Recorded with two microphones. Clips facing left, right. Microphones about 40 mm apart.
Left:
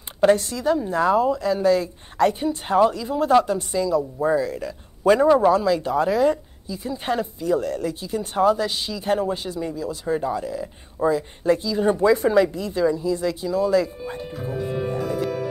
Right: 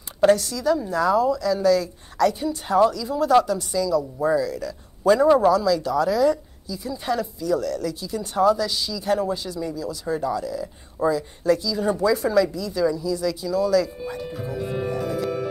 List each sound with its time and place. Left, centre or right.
0.3 s a woman's voice: left
14.9 s music: left